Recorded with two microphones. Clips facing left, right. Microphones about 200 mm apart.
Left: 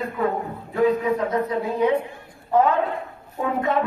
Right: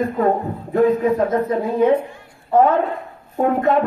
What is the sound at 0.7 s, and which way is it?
Speech, 45° right (ahead or behind).